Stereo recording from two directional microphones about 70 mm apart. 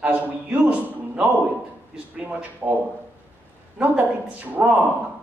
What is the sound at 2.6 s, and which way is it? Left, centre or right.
Speech, right.